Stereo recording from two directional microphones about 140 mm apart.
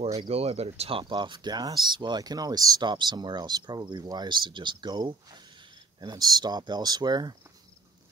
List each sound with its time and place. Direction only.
0.2 s speech: 45° right (ahead or behind); by 7.3 s 30° right (ahead or behind)